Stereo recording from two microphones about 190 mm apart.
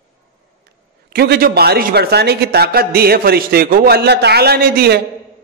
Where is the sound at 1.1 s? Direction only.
55° right (ahead or behind).